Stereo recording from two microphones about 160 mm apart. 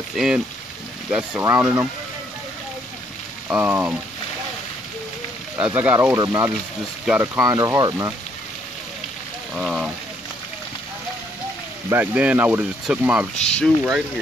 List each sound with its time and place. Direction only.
0.1 s speech: centre (ahead or behind)
1.4 s speech: 10° right (ahead or behind)
3.4 s speech: 15° right (ahead or behind)
5.7 s speech: 15° right (ahead or behind)
7.1 s speech: 5° right (ahead or behind)
7.4 s speech: 20° right (ahead or behind)
9.6 s speech: 5° right (ahead or behind)
11.9 s speech: 10° right (ahead or behind)
13.4 s speech: 5° left (ahead or behind)